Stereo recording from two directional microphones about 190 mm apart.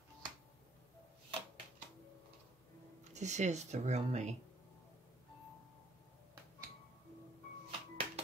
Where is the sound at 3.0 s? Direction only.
35° right (ahead or behind).